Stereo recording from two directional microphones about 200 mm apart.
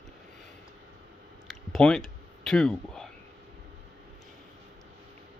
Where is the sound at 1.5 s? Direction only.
5° left (ahead or behind).